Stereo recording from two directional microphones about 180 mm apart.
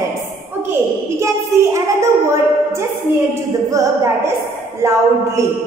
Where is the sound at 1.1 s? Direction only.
15° right (ahead or behind).